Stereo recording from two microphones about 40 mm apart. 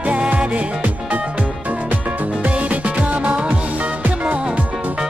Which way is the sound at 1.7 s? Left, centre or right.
Right.